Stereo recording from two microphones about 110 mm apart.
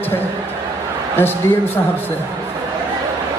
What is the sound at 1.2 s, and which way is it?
Speech, 20° left (ahead or behind).